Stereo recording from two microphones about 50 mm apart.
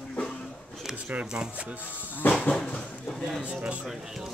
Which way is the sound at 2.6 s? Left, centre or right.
Centre.